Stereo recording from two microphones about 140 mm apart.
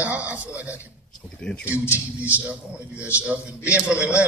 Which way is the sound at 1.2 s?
5° left (ahead or behind).